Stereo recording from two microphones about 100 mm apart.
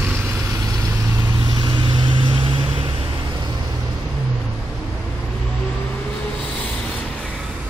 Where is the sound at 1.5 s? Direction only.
50° right (ahead or behind).